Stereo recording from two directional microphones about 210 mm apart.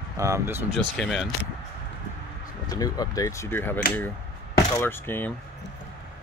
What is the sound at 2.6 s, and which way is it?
Speech, 15° left (ahead or behind).